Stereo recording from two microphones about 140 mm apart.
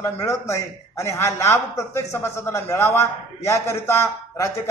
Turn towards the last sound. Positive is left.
turn(degrees=20)  # may be behind; listen again after turning